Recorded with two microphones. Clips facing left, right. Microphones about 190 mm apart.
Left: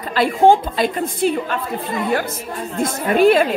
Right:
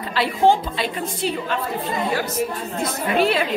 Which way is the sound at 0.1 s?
50° left (ahead or behind).